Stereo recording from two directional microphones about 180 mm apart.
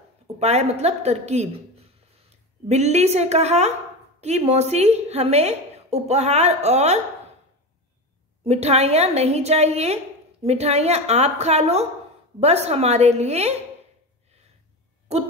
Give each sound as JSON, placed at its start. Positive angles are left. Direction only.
{"t": 0.4, "sound": "a woman's voice", "side_deg": -35}
{"t": 8.5, "sound": "a woman's voice", "side_deg": -35}